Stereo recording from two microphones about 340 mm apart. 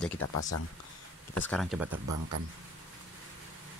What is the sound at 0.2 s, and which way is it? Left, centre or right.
Speech, left.